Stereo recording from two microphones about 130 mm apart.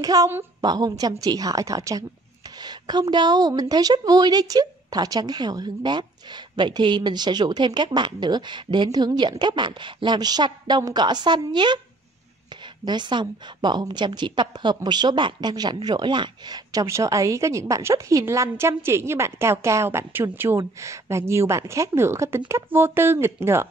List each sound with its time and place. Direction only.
0.0 s a woman's voice: 30° right (ahead or behind)
12.8 s a woman's voice: 35° right (ahead or behind); by 23.7 s 20° right (ahead or behind)